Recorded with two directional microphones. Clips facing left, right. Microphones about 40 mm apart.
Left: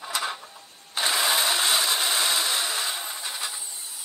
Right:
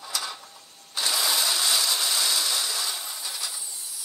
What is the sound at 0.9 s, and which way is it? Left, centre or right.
Tools, left.